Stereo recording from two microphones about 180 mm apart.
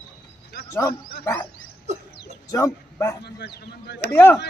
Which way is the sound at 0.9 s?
60° left (ahead or behind).